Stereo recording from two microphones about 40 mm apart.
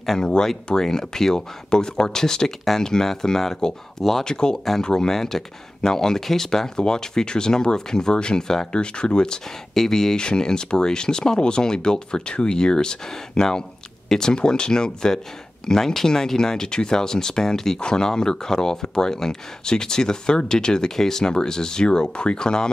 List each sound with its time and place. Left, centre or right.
0.2 s speech: centre
4.2 s speech: centre